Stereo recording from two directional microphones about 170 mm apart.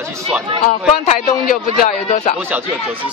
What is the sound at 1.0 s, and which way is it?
Speech, 45° left (ahead or behind).